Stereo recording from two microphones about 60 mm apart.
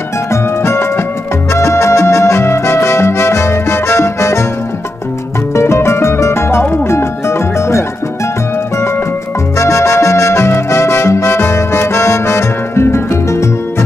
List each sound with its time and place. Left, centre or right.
0.3 s music: left
5.5 s music: left
9.6 s music: left